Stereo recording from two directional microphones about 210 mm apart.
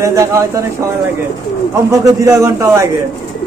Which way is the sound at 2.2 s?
15° right (ahead or behind).